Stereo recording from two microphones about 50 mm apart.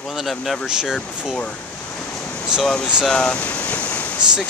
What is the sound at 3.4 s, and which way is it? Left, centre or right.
Waves, left.